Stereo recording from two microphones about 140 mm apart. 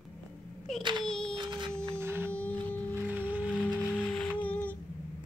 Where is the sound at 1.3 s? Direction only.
35° right (ahead or behind).